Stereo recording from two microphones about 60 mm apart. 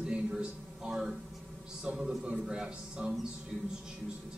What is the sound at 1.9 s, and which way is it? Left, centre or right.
A man's voice, centre.